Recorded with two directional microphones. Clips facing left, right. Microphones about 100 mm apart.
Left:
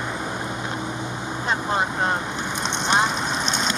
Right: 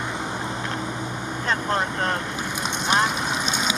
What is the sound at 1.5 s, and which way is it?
Vehicle, 10° left (ahead or behind).